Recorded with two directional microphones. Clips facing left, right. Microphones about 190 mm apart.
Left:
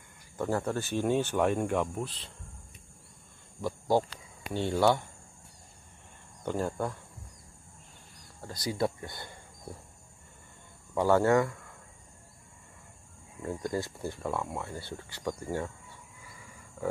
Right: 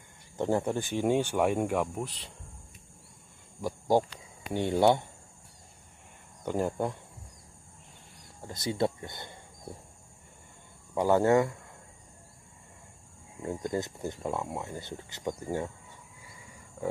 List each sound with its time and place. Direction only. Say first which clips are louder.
0.4 s speech: right 2 dB; 20° right (ahead or behind)
3.6 s speech: right 1 dB; 15° right (ahead or behind)
6.4 s speech: right 2 dB; 15° right (ahead or behind)
8.4 s speech: right 1 dB; 20° right (ahead or behind)
11.0 s speech: right 1 dB; 15° right (ahead or behind)
13.4 s speech: right 1 dB; 20° right (ahead or behind)
16.8 s roaring cats: even; 20° right (ahead or behind)